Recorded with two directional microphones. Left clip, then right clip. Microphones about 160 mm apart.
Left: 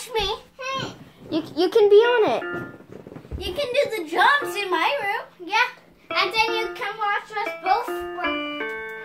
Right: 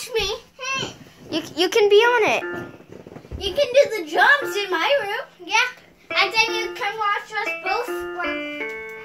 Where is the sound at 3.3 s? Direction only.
5° left (ahead or behind).